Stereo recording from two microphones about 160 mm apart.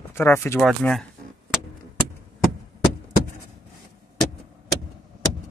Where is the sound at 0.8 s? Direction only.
5° left (ahead or behind).